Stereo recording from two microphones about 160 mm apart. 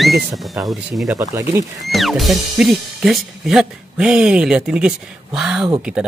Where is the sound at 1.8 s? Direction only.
Centre (ahead or behind).